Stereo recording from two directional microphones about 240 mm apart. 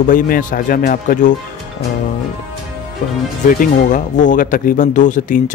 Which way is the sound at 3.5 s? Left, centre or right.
Left.